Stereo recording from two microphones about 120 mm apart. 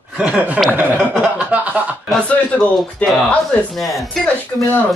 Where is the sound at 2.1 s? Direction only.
5° left (ahead or behind).